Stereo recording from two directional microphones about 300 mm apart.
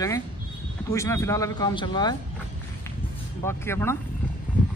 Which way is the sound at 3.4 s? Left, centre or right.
Centre.